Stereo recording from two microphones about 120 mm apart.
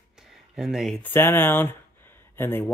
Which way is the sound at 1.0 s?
15° left (ahead or behind).